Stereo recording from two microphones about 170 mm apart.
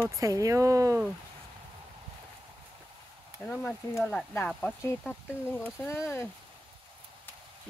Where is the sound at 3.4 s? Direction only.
10° left (ahead or behind).